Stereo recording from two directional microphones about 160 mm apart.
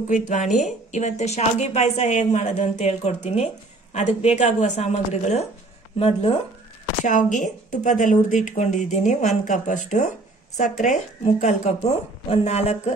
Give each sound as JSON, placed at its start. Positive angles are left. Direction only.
{"t": 0.1, "sound": "speech", "side_deg": 50}
{"t": 7.1, "sound": "speech", "side_deg": 50}
{"t": 11.2, "sound": "speech", "side_deg": 45}